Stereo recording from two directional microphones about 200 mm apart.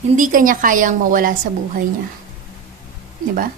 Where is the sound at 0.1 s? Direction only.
40° right (ahead or behind).